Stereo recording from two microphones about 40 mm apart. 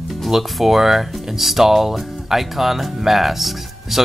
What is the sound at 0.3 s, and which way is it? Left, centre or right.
Speech, centre.